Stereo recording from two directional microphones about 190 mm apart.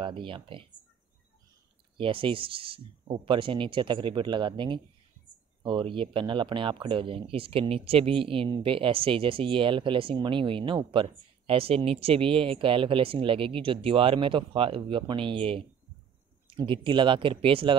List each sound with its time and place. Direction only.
0.0 s speech: 25° right (ahead or behind)
2.0 s speech: 25° right (ahead or behind)